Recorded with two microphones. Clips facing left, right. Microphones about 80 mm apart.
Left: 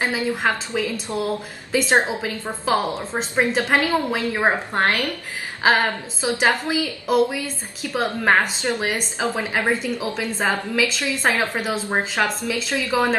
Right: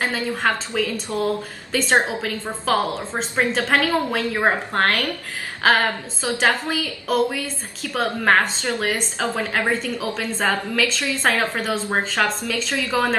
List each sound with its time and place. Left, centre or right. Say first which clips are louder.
0.0 s a woman's voice: left 1 dB; centre